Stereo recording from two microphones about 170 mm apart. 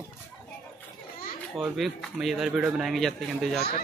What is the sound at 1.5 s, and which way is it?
Speech, centre (ahead or behind).